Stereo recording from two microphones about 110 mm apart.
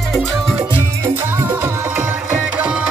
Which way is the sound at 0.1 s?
5° left (ahead or behind).